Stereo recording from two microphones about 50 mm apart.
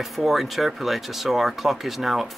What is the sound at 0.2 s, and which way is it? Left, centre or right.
Speech, centre.